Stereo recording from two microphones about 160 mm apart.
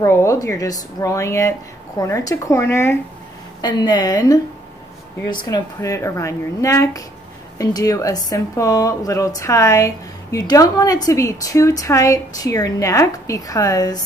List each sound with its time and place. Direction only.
0.0 s speech: 15° left (ahead or behind)
3.6 s speech: 25° left (ahead or behind)